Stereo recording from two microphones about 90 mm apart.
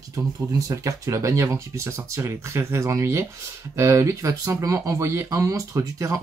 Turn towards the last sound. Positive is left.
turn(degrees=-35)  # may be behind; listen again after turning